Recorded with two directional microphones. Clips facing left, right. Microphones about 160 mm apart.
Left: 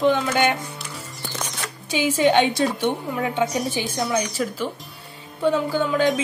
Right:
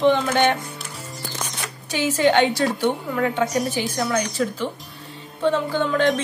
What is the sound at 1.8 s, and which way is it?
Speech, 15° left (ahead or behind).